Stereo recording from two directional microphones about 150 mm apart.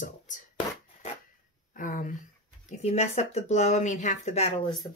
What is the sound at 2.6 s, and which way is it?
Speech, 45° left (ahead or behind).